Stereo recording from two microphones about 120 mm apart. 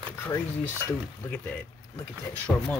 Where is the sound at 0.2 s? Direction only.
20° left (ahead or behind).